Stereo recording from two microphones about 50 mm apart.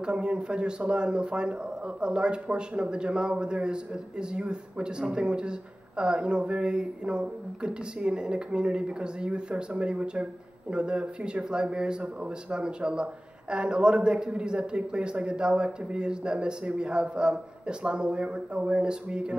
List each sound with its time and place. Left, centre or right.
0.0 s a man's voice: centre